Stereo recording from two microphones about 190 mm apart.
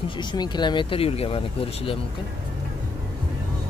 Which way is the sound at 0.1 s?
25° left (ahead or behind).